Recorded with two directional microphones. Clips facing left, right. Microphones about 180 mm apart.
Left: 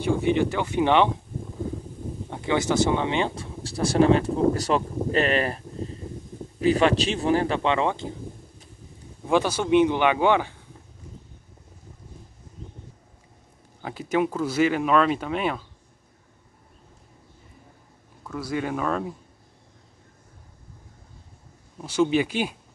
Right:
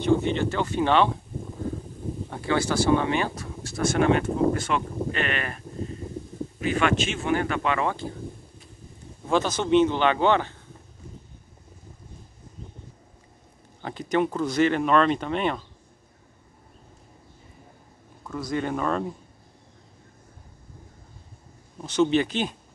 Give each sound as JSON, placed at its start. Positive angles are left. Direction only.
{"t": 0.0, "sound": "speech", "side_deg": 10}
{"t": 2.2, "sound": "speech", "side_deg": 20}
{"t": 6.6, "sound": "speech", "side_deg": 35}
{"t": 9.3, "sound": "speech", "side_deg": 10}
{"t": 13.7, "sound": "speech", "side_deg": 5}
{"t": 18.2, "sound": "speech", "side_deg": 5}
{"t": 21.7, "sound": "speech", "side_deg": 10}